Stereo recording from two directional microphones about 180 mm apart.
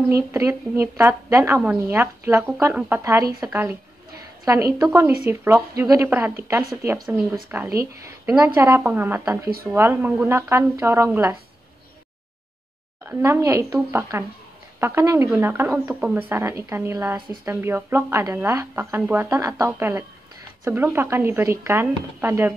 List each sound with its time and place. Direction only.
0.1 s a woman's voice: 15° right (ahead or behind)
13.1 s a woman's voice: 15° right (ahead or behind)